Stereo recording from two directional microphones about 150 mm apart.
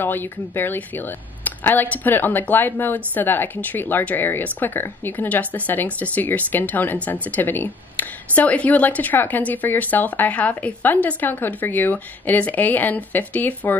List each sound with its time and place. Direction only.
0.0 s speech: 15° left (ahead or behind)